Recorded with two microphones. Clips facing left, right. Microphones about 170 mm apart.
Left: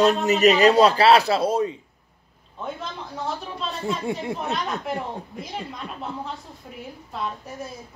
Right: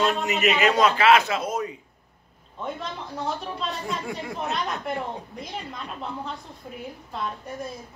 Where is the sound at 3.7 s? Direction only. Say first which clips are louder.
Left 6 dB; 25° left (ahead or behind).